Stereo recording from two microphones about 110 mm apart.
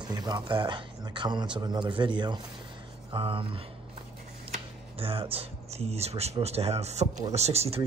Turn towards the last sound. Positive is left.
turn(degrees=-70)  # may be behind; listen again after turning